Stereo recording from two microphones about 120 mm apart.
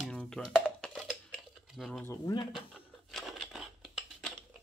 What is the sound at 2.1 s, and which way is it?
Speech, 30° left (ahead or behind).